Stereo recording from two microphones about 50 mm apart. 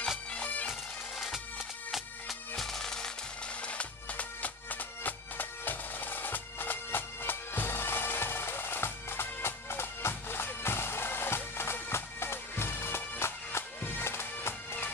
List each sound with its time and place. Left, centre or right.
0.3 s bagpipes: left
1.9 s music: centre
3.6 s bagpipes: left